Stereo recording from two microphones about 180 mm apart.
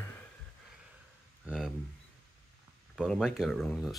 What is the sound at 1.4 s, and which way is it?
Speech, centre (ahead or behind).